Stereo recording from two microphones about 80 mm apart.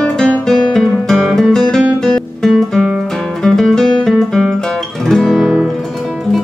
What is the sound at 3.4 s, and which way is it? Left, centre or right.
Music, centre.